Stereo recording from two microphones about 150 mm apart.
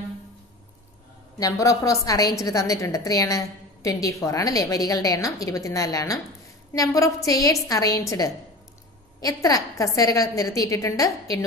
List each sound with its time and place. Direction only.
1.4 s a woman's voice: 20° left (ahead or behind)
9.2 s a woman's voice: 25° left (ahead or behind)